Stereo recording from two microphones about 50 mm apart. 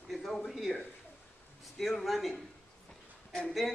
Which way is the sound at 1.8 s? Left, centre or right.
Centre.